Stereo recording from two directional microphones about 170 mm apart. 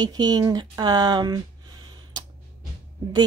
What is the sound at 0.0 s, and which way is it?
Speech, 25° right (ahead or behind).